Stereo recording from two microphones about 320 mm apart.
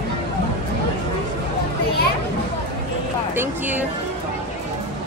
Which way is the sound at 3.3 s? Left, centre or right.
Centre.